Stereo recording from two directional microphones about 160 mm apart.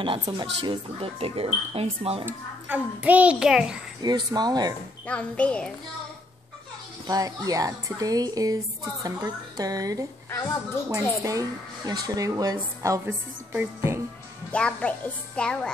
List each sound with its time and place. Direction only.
0.0 s speech: 35° right (ahead or behind)
2.2 s a child's voice: 10° right (ahead or behind)
4.0 s speech: 25° right (ahead or behind)
5.0 s speech: 5° left (ahead or behind)
7.1 s speech: 25° right (ahead or behind)
10.3 s speech: 15° left (ahead or behind)
10.9 s speech: 20° right (ahead or behind)
14.5 s a child's voice: 5° left (ahead or behind)